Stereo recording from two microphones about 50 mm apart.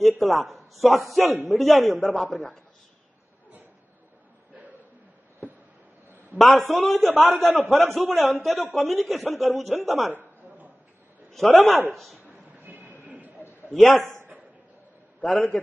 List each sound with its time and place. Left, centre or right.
0.2 s a man's voice: centre
6.3 s a man's voice: centre
11.3 s a man's voice: centre
12.3 s train: right
13.0 s a sound: right
13.7 s a man's voice: centre
15.2 s a man's voice: centre